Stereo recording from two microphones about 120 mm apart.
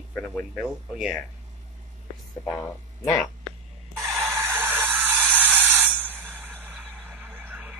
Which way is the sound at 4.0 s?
Centre (ahead or behind).